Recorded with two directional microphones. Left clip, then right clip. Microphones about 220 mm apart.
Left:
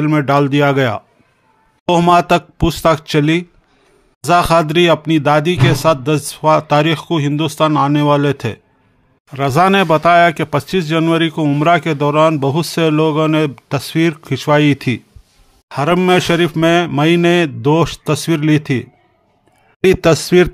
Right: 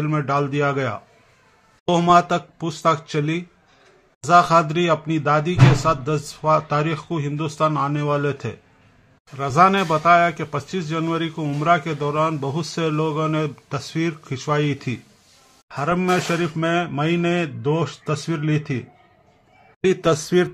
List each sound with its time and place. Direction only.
0.0 s speech: 45° left (ahead or behind)